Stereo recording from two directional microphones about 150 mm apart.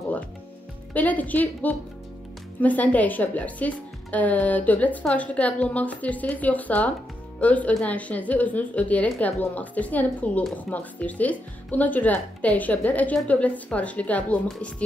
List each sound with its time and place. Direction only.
0.9 s speech: 10° left (ahead or behind)